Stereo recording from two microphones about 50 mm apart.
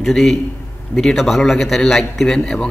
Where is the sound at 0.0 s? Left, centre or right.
Centre.